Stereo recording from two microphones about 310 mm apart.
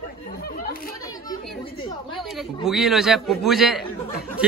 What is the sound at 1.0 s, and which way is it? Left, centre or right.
Speech, centre.